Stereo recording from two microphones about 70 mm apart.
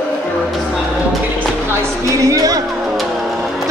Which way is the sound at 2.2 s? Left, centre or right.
Right.